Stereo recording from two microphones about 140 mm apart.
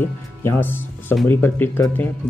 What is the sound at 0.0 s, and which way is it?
Speech, 15° left (ahead or behind).